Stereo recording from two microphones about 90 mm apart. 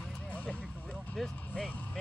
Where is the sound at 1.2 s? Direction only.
5° left (ahead or behind).